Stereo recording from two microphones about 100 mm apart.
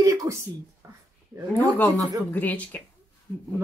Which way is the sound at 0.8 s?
30° right (ahead or behind).